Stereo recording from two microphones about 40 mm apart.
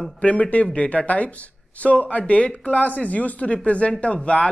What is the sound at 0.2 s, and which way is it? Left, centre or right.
Speech, left.